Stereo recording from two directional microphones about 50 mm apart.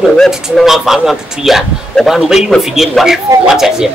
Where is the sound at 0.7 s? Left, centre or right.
Centre.